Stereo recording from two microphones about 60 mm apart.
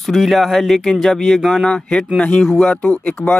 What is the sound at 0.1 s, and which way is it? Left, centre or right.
Speech, centre.